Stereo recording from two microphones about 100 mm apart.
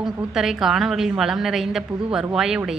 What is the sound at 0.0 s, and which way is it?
Speech, 5° right (ahead or behind).